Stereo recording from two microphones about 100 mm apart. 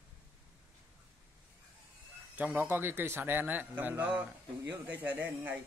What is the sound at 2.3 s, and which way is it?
A man's voice, 15° right (ahead or behind).